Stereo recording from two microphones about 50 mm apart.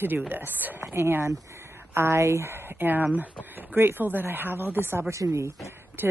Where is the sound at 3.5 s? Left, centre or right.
Right.